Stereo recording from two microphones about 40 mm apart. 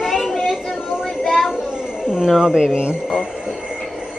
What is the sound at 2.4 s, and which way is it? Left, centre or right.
Speech, centre.